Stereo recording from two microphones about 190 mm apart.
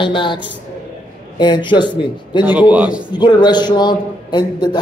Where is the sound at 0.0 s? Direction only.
25° left (ahead or behind).